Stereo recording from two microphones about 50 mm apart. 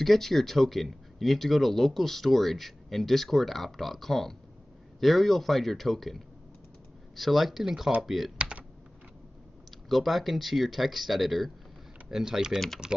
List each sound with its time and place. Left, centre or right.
0.0 s speech: centre
8.4 s typing: right
9.8 s speech: centre
12.5 s speech: centre